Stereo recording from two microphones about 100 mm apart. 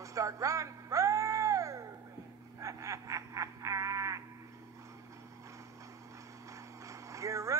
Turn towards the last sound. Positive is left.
turn(degrees=-30)  # may be behind; listen again after turning